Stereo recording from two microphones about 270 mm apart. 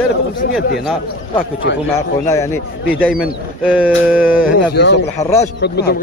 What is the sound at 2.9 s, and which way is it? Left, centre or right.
Speech, centre.